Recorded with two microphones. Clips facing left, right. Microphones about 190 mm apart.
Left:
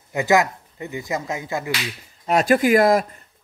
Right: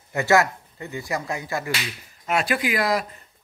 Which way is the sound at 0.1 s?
15° left (ahead or behind).